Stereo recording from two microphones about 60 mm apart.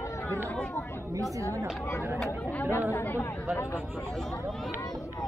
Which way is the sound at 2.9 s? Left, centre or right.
Left.